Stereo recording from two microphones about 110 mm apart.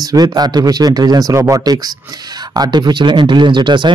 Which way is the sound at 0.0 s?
35° right (ahead or behind).